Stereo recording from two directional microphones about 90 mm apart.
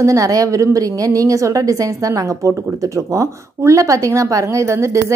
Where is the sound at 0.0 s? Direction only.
40° right (ahead or behind).